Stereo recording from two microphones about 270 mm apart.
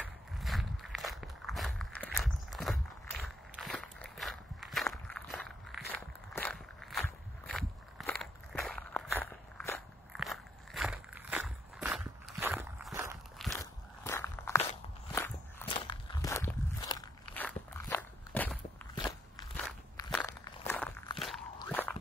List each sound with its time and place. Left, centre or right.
0.0 s walk: centre
13.6 s walk: centre
21.6 s biting: centre